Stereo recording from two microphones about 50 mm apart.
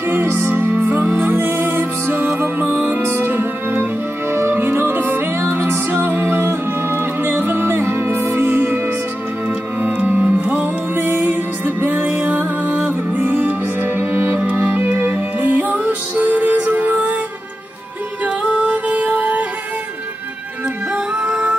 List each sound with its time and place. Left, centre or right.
0.1 s music: right
3.1 s music: right
9.8 s music: right
14.6 s music: right
18.2 s music: right
20.9 s music: centre